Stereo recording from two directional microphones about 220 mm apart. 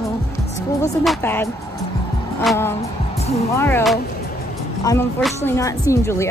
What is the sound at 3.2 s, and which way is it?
Music, 30° left (ahead or behind).